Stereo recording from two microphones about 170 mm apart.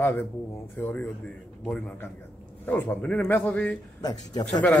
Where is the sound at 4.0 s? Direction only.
25° left (ahead or behind).